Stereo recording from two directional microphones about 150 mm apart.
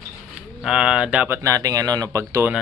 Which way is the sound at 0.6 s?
5° right (ahead or behind).